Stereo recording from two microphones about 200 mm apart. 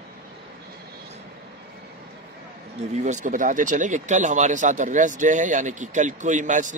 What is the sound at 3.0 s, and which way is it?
Speech, 35° right (ahead or behind).